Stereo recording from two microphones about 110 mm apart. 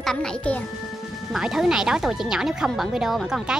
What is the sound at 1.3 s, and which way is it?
Speech, 5° right (ahead or behind).